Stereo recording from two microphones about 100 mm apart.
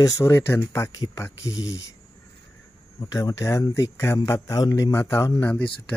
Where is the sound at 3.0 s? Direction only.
35° left (ahead or behind).